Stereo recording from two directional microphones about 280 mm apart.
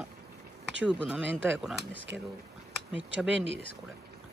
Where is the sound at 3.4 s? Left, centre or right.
Right.